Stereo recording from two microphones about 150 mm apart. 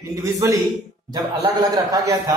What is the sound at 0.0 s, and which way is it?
A man's voice, 25° right (ahead or behind).